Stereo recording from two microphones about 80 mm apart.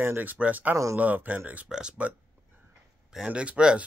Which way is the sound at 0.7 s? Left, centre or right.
Right.